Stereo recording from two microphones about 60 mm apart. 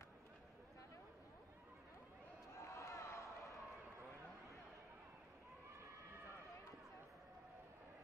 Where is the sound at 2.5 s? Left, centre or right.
Left.